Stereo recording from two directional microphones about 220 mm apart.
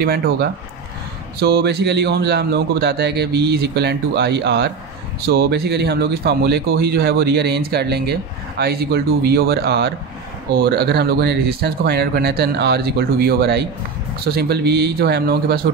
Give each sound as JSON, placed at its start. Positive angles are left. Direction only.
{"t": 0.0, "sound": "speech", "side_deg": -45}